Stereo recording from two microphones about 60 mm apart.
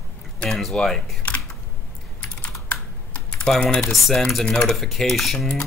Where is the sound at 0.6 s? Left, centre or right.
Centre.